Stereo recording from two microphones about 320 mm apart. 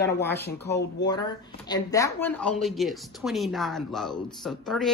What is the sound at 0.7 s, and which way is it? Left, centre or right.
Speech, left.